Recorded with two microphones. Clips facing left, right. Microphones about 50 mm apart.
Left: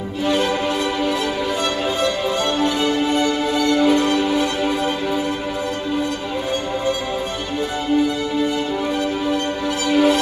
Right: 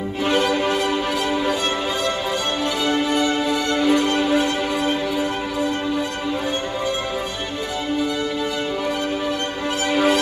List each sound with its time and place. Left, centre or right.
4.1 s music: right
9.9 s music: right